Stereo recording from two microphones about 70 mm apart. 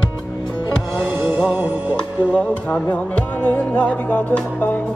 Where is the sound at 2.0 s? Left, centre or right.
Centre.